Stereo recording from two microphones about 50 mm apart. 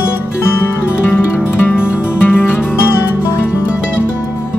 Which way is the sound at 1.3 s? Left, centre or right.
Left.